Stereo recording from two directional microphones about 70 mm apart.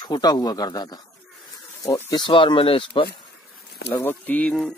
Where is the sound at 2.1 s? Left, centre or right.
Left.